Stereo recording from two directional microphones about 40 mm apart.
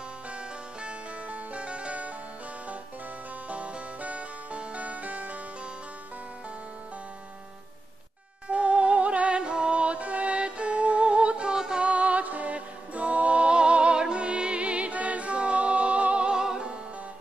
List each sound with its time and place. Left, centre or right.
0.8 s music: right
3.4 s music: right
8.5 s music: right